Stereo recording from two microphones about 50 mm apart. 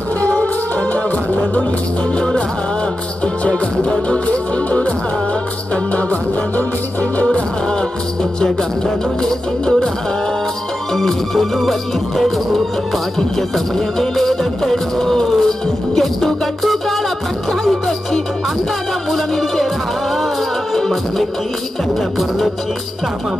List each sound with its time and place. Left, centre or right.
0.2 s music: left
2.1 s music: left
3.4 s music: left
5.9 s music: left
7.2 s music: centre
11.0 s music: centre
13.4 s music: centre
20.7 s music: centre